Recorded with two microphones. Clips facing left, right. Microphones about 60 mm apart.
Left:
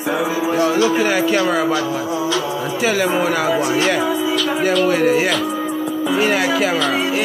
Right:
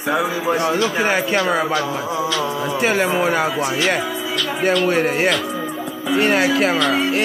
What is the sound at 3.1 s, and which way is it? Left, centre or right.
Speech, centre.